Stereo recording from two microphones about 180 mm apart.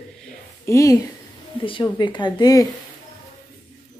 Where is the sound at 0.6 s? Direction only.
15° left (ahead or behind).